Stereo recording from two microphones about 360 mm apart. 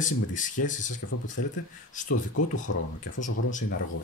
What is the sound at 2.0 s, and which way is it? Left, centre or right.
Speech, left.